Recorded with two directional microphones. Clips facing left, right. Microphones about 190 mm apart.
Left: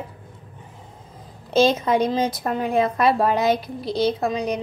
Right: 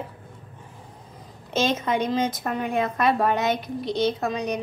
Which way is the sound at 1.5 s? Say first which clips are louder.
Left 6 dB; 35° left (ahead or behind).